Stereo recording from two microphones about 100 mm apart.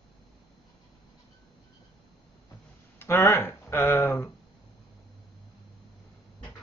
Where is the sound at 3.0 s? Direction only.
25° left (ahead or behind).